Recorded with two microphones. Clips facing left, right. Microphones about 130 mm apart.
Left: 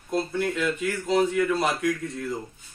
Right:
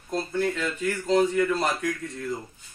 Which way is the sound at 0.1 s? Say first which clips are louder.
Left 1 dB; 10° left (ahead or behind).